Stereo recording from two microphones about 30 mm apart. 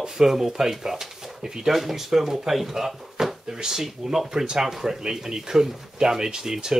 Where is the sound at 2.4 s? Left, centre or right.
Centre.